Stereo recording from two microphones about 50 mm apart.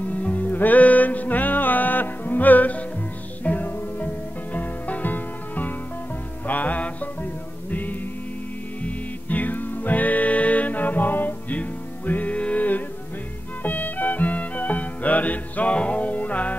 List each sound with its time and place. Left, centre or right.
0.0 s music: left
8.8 s music: left